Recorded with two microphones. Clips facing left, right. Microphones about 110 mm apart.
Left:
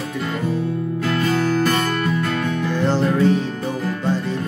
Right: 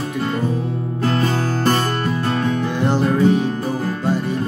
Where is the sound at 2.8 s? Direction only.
15° right (ahead or behind).